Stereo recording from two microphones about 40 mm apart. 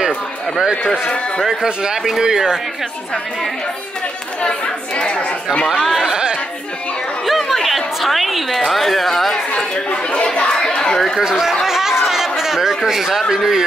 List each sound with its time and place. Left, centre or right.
1.8 s speech: centre
4.5 s speech: left
5.8 s speech: centre
6.0 s chatter: centre
7.2 s a woman's voice: centre
10.2 s speech: left
10.5 s a sound: centre
11.1 s speech: centre
11.6 s chatter: centre
13.3 s speech: centre